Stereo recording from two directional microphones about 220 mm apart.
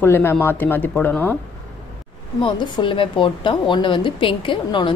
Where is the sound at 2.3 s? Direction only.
20° left (ahead or behind).